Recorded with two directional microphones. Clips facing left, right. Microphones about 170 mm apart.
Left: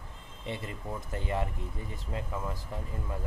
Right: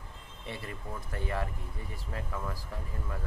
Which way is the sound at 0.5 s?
20° left (ahead or behind).